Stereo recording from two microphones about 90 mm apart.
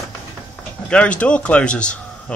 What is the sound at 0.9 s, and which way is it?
A man's voice, 15° left (ahead or behind).